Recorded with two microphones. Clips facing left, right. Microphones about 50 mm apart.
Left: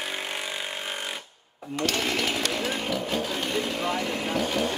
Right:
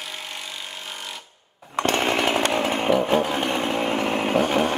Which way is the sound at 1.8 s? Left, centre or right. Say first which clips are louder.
Right 5 dB; right.